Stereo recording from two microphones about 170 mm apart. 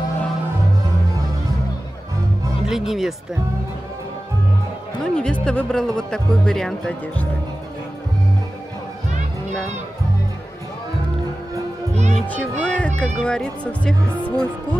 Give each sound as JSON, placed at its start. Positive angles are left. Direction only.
{"t": 2.6, "sound": "speech", "side_deg": 0}
{"t": 5.1, "sound": "speech", "side_deg": 5}
{"t": 11.9, "sound": "music", "side_deg": -40}
{"t": 12.4, "sound": "music", "side_deg": 5}
{"t": 13.0, "sound": "speech", "side_deg": 5}